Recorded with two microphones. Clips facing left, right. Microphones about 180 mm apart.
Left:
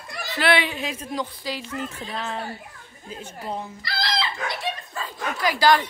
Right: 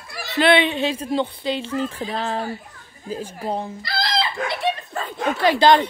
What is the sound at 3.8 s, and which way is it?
Chicken, 50° right (ahead or behind).